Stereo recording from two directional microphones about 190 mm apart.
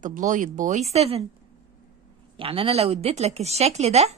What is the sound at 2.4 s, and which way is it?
A woman's voice, 30° right (ahead or behind).